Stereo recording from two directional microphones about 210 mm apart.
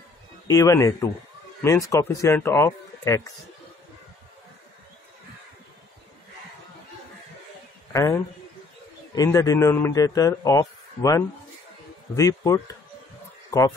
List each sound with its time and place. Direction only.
0.5 s speech: 15° left (ahead or behind)
7.9 s speech: 15° left (ahead or behind)